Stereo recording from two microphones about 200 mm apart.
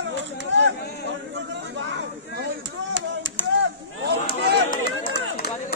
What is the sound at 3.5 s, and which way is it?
Chop, 60° right (ahead or behind).